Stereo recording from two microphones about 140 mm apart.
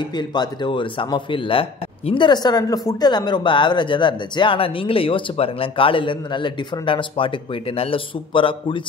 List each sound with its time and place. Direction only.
0.0 s speech: 30° left (ahead or behind)